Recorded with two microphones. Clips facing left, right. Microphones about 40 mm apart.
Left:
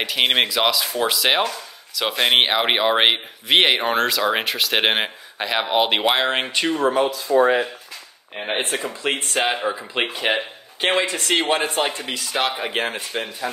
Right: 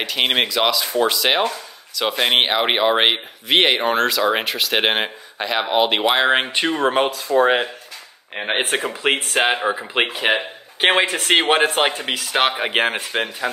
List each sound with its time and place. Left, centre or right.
0.0 s speech: centre
6.2 s speech: centre
6.9 s speech: right
7.3 s speech: right
8.4 s speech: right
8.7 s speech: right
10.8 s speech: right